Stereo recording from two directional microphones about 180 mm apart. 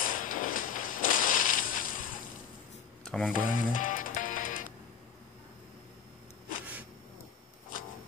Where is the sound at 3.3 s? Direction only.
50° left (ahead or behind).